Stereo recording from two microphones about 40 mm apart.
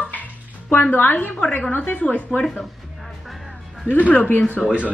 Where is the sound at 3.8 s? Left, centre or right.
Left.